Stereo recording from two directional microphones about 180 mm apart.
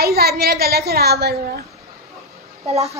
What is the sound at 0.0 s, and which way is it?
A woman's voice, 60° right (ahead or behind).